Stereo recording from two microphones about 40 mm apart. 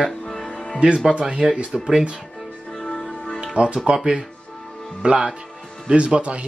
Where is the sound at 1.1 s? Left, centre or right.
Right.